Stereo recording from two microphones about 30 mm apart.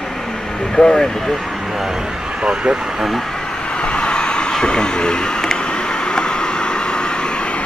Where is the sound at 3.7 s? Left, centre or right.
Left.